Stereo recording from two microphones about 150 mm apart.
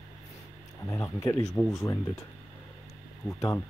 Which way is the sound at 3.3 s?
20° left (ahead or behind).